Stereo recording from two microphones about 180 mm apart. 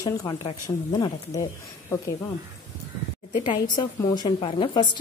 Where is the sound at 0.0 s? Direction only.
20° left (ahead or behind).